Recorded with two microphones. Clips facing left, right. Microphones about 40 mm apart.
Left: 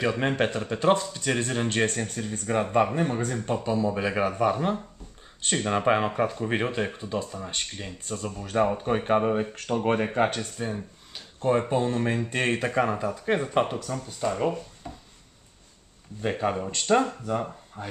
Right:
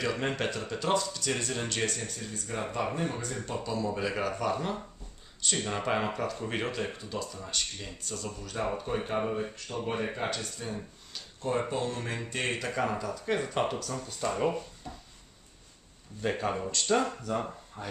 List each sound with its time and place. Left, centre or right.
0.0 s speech: left
3.7 s speech: left
14.0 s speech: centre
16.2 s speech: centre
16.7 s speech: left
17.3 s speech: centre